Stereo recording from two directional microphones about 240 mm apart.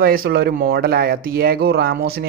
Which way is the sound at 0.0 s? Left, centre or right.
Right.